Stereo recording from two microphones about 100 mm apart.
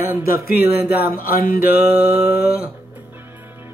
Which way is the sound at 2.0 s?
20° right (ahead or behind).